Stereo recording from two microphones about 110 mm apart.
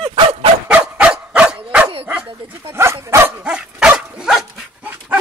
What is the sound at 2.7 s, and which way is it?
Dog, 25° right (ahead or behind).